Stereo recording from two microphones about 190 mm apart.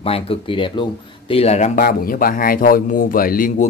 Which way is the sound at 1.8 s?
50° left (ahead or behind).